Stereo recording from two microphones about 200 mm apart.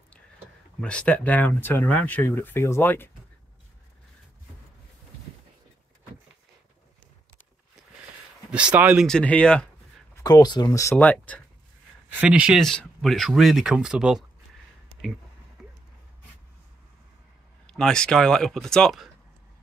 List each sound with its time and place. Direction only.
0.7 s speech: 5° left (ahead or behind)
8.5 s speech: 5° right (ahead or behind)
9.0 s speech: 5° left (ahead or behind)
10.1 s speech: 20° left (ahead or behind)
12.2 s speech: 5° right (ahead or behind)
15.6 s a sound: centre (ahead or behind)
17.6 s speech: 5° left (ahead or behind)